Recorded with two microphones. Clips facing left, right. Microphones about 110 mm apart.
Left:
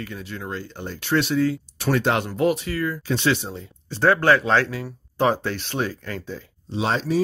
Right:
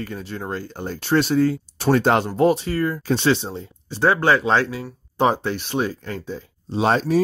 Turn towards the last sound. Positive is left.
turn(degrees=-50)  # may be behind; listen again after turning